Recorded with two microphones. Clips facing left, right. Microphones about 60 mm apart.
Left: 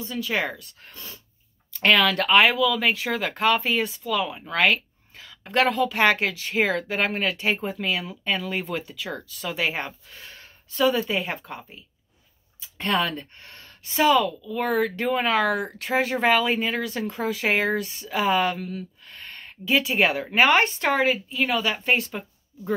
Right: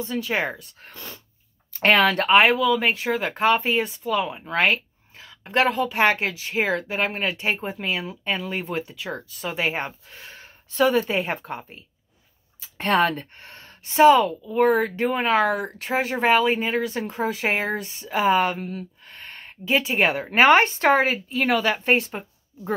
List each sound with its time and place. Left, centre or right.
0.0 s speech: right
5.4 s speech: centre; by 10.5 s right
10.7 s speech: right